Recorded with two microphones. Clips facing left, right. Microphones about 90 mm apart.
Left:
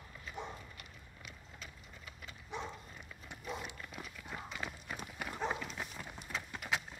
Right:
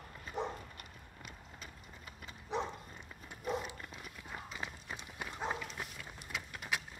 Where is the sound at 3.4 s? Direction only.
40° right (ahead or behind).